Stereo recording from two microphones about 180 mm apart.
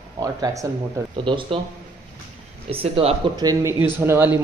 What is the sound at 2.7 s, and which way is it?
Speech, 30° right (ahead or behind).